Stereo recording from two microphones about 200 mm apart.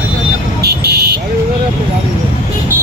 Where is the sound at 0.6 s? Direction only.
50° right (ahead or behind).